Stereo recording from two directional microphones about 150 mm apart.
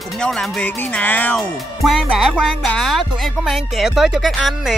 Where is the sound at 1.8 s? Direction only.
Centre (ahead or behind).